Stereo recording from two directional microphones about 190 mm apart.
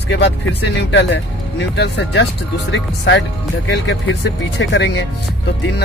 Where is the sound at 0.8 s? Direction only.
65° left (ahead or behind).